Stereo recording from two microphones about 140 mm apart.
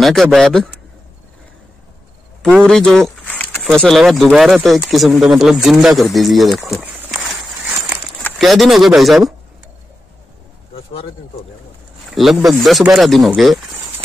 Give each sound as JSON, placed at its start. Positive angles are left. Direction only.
{"t": 0.0, "sound": "speech", "side_deg": 0}
{"t": 2.4, "sound": "speech", "side_deg": 5}
{"t": 7.1, "sound": "a sound", "side_deg": -5}
{"t": 8.4, "sound": "speech", "side_deg": 0}
{"t": 12.1, "sound": "speech", "side_deg": 0}